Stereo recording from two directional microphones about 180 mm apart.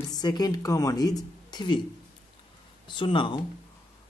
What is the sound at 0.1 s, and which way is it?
Speech, 20° left (ahead or behind).